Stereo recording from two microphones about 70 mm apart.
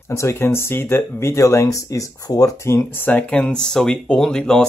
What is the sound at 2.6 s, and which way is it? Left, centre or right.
Speech, left.